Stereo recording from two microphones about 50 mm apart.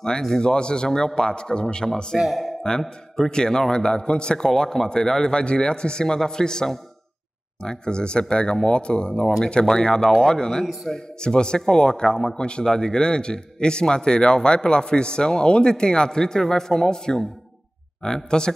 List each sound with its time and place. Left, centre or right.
0.4 s a man's voice: centre
2.1 s a man's voice: centre